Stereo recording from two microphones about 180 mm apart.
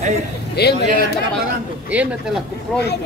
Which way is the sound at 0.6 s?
65° left (ahead or behind).